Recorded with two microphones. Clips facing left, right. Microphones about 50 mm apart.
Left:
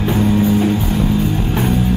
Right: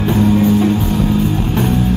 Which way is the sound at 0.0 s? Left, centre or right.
Centre.